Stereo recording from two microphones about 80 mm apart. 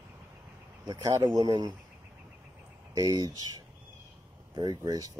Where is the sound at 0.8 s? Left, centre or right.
Right.